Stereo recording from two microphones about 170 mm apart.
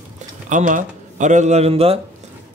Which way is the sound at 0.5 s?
50° right (ahead or behind).